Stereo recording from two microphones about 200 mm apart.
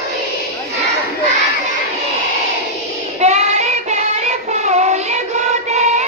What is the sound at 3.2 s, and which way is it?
Child singing, 35° right (ahead or behind).